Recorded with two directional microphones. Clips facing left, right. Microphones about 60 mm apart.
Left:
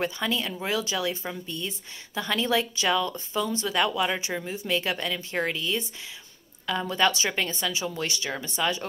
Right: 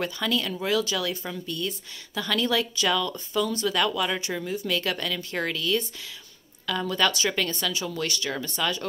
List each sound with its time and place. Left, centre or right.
0.0 s speech: left